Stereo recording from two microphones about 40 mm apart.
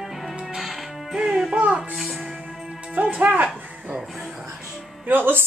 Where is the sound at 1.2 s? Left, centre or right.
Centre.